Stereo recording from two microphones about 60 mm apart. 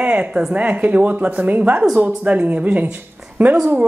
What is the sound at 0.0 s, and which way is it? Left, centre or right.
A woman's voice, centre.